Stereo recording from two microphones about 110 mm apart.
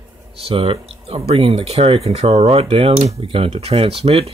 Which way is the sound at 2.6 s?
60° right (ahead or behind).